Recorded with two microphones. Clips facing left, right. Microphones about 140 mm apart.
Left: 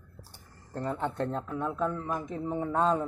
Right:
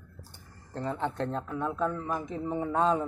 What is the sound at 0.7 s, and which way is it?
A man's voice, 5° left (ahead or behind).